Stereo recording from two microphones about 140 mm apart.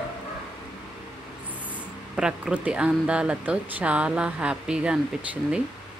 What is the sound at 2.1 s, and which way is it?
Speech, 5° right (ahead or behind).